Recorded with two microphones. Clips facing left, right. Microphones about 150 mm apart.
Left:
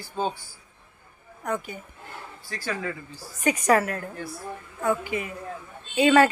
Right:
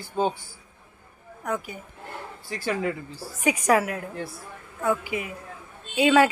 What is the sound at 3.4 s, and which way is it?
A woman's voice, 5° right (ahead or behind).